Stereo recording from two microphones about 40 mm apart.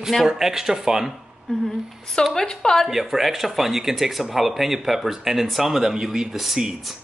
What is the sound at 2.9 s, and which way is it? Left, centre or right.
Speech, centre.